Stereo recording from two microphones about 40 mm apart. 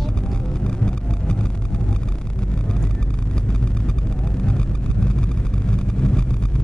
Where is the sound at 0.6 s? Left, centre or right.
Left.